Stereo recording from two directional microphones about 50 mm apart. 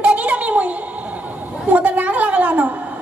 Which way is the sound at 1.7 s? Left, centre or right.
Right.